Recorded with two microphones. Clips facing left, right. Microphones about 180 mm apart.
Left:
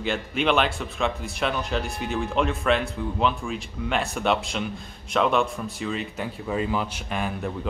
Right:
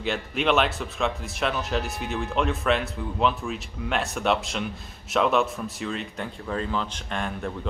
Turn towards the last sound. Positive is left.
turn(degrees=5)  # may be behind; listen again after turning